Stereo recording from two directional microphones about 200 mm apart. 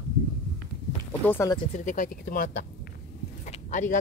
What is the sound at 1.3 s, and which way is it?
Speech, 15° left (ahead or behind).